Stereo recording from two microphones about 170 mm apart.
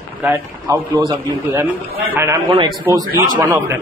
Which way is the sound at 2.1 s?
15° right (ahead or behind).